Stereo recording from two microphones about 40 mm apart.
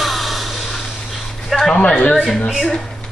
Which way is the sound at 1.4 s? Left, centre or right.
Centre.